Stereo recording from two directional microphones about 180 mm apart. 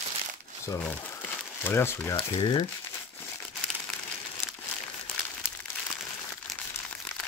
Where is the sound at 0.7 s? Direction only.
10° left (ahead or behind).